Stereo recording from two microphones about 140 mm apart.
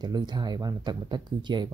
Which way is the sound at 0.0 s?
30° right (ahead or behind).